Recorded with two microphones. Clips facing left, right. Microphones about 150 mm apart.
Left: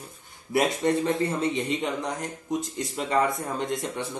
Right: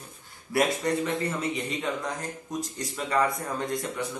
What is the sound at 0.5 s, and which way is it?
A man's voice, 25° left (ahead or behind).